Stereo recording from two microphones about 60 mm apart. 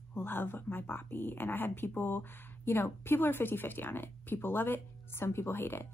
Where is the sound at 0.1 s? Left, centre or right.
Left.